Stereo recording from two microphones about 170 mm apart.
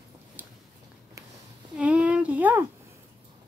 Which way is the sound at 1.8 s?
10° right (ahead or behind).